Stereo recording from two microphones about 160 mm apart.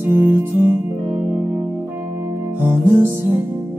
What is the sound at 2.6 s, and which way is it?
Music, 15° right (ahead or behind).